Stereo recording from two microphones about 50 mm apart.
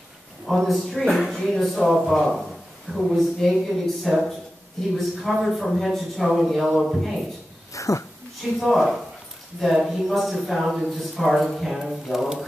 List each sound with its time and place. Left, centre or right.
0.5 s speech: centre
7.7 s a sound: left
8.5 s speech: centre